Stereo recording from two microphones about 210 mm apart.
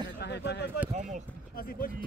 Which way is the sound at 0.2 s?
55° left (ahead or behind).